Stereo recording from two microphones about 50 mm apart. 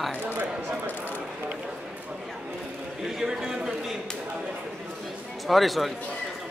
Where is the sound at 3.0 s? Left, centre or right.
Centre.